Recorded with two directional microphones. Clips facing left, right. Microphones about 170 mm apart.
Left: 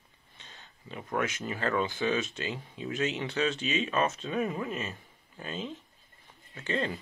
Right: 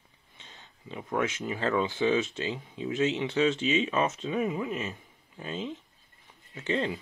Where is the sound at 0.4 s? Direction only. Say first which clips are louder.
Right 1 dB; 20° right (ahead or behind).